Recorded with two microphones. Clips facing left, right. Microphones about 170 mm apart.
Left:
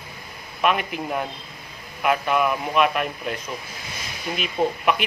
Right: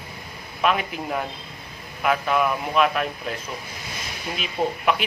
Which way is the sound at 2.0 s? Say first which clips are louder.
Left 1 dB; centre (ahead or behind).